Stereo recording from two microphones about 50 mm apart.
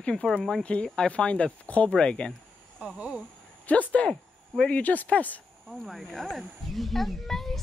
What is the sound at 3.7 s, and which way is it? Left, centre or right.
Speech, left.